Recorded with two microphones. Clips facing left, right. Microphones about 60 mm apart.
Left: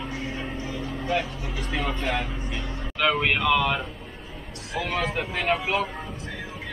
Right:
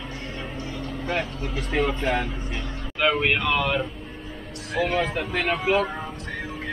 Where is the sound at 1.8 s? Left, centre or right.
Centre.